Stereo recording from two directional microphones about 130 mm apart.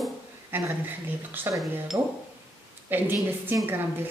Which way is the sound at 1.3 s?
15° right (ahead or behind).